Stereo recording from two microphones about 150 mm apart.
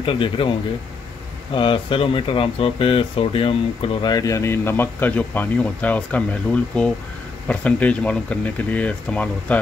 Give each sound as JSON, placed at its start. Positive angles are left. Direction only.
{"t": 0.0, "sound": "speech", "side_deg": 35}
{"t": 1.5, "sound": "speech", "side_deg": 35}
{"t": 4.0, "sound": "speech", "side_deg": 25}